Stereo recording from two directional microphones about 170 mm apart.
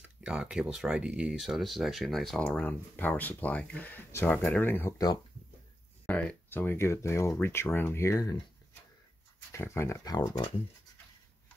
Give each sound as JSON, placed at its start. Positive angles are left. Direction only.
{"t": 0.2, "sound": "speech", "side_deg": -5}
{"t": 6.0, "sound": "speech", "side_deg": 10}
{"t": 9.5, "sound": "speech", "side_deg": 15}